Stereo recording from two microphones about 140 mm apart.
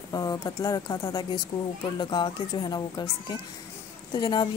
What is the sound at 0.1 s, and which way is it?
A woman's voice, 25° left (ahead or behind).